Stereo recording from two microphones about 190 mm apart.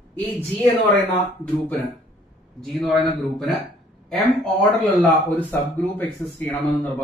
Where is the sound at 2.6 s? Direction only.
Centre (ahead or behind).